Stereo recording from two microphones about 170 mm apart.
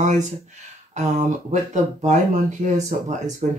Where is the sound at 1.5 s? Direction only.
45° right (ahead or behind).